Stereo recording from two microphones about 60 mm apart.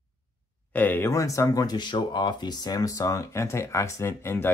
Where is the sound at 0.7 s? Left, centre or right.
Left.